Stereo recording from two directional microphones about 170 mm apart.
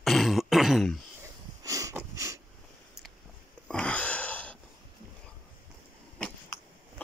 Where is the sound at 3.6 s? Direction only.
5° left (ahead or behind).